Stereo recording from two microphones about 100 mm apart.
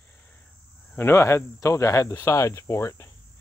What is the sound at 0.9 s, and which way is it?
Cricket, 25° left (ahead or behind).